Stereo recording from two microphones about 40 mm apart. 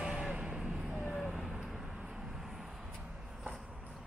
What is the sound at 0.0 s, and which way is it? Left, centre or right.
Vehicle, right.